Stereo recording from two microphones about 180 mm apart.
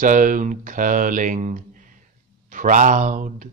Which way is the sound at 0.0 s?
50° right (ahead or behind).